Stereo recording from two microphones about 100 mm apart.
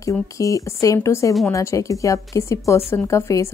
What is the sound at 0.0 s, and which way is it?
Speech, 35° left (ahead or behind).